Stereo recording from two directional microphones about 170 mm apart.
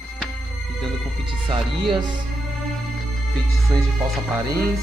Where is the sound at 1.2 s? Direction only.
30° right (ahead or behind).